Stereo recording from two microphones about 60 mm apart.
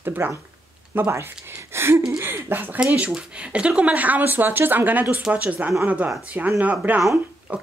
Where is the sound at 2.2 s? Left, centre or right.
Right.